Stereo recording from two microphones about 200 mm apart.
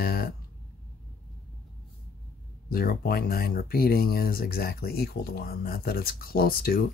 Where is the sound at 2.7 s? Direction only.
50° left (ahead or behind).